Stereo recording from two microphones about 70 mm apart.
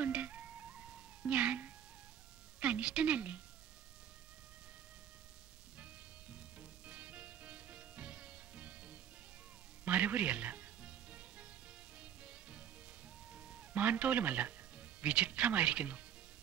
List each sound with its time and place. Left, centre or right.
0.0 s music: centre
2.6 s a woman's voice: centre
6.6 s music: centre
13.3 s speech: centre